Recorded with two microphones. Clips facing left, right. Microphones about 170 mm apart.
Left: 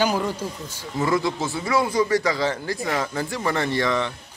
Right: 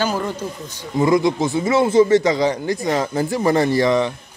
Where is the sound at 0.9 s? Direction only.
15° right (ahead or behind).